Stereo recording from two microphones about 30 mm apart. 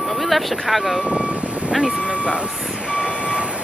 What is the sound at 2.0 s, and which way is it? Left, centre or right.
Speech, right.